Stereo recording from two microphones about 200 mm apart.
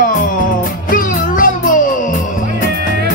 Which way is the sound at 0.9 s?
45° left (ahead or behind).